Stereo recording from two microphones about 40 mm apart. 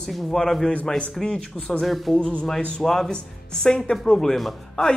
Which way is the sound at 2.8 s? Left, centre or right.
Centre.